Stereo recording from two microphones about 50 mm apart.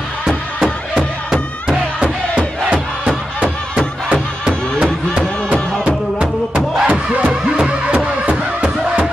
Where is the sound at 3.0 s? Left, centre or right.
Centre.